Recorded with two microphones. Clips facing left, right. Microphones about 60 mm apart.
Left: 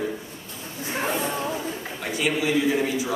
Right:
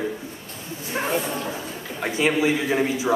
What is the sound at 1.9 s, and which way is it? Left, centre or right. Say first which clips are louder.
A man's voice: right 5 dB; right.